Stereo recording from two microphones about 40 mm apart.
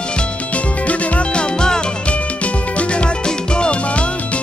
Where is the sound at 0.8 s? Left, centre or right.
Left.